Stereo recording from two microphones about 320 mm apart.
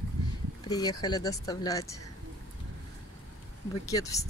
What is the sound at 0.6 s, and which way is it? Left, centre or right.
Speech, centre.